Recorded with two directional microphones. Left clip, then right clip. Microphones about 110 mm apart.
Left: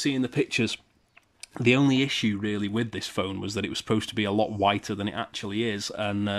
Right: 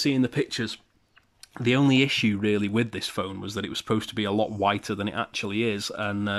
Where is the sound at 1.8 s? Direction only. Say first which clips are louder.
Right 3 dB; 5° right (ahead or behind).